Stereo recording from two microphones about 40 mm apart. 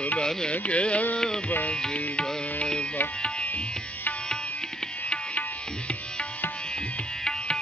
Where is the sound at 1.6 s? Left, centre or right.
Left.